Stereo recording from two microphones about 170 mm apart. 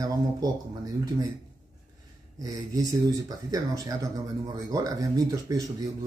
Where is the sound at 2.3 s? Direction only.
20° right (ahead or behind).